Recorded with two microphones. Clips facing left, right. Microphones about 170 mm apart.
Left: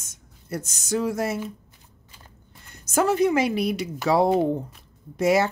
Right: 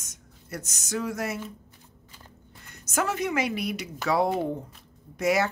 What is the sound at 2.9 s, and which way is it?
Speech, 30° left (ahead or behind).